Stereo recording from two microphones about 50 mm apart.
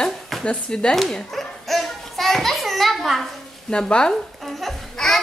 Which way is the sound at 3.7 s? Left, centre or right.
Centre.